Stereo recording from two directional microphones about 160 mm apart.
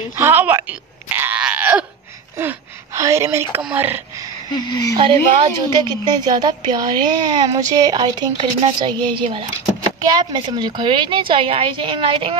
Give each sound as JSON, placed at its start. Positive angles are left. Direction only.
{"t": 0.2, "sound": "wail", "side_deg": -10}
{"t": 2.3, "sound": "a sound", "side_deg": -15}
{"t": 3.6, "sound": "speech", "side_deg": -10}
{"t": 4.9, "sound": "a woman's voice", "side_deg": -30}